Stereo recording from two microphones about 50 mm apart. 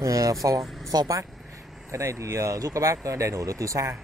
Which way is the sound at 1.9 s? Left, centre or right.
Right.